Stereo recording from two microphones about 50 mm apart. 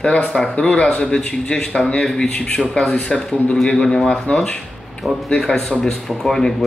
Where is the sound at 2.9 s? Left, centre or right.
Centre.